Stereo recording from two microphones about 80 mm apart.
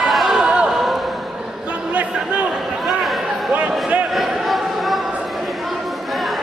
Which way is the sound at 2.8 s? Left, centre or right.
Centre.